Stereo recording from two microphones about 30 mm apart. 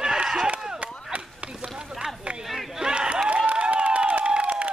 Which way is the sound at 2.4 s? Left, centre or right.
Centre.